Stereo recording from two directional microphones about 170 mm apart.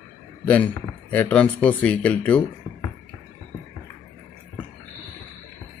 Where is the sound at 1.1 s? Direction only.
10° left (ahead or behind).